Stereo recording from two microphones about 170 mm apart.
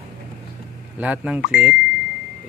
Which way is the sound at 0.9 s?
10° right (ahead or behind).